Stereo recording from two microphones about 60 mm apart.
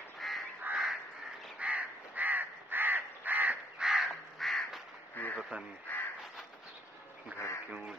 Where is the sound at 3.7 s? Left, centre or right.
Centre.